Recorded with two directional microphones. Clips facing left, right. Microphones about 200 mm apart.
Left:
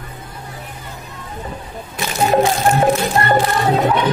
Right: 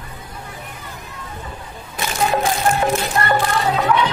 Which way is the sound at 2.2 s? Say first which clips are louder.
Left 4 dB; 35° left (ahead or behind).